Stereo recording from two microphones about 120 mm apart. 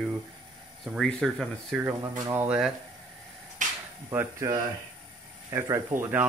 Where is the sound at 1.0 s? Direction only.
5° left (ahead or behind).